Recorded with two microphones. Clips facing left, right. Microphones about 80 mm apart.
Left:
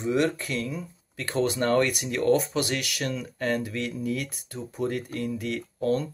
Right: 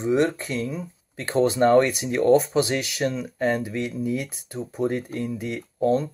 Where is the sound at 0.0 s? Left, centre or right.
Right.